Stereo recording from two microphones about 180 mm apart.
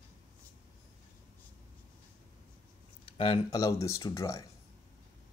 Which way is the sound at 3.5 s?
20° left (ahead or behind).